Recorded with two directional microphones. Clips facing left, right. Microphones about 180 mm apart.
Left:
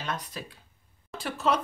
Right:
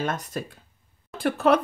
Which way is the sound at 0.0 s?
50° right (ahead or behind).